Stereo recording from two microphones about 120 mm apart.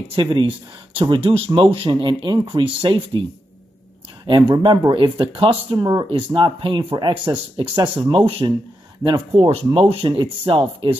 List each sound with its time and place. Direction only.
0.1 s speech: 45° right (ahead or behind)
4.3 s speech: 40° right (ahead or behind)
6.0 s speech: 45° right (ahead or behind)